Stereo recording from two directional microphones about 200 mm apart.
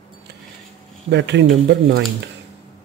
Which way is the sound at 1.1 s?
60° right (ahead or behind).